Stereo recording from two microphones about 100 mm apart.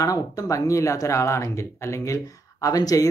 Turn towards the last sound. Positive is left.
turn(degrees=35)  # may be behind; listen again after turning